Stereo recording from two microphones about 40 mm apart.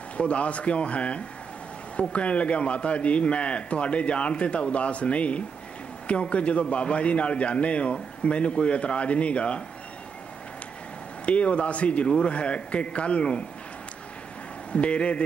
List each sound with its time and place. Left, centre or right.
0.2 s a man's voice: left
11.2 s a man's voice: left
14.7 s speech: left